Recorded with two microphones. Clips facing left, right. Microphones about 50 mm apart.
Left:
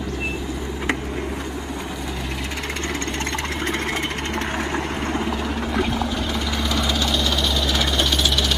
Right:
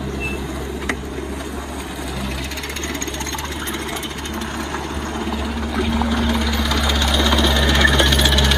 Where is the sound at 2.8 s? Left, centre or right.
Centre.